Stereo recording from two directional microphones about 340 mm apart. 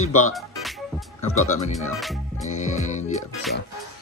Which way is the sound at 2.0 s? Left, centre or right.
Centre.